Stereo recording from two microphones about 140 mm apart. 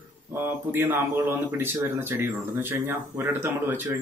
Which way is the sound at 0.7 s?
15° right (ahead or behind).